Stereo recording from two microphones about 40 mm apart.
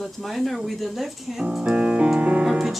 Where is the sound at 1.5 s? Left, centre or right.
Right.